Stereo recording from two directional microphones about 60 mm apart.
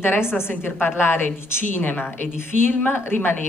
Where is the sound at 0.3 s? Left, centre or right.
Left.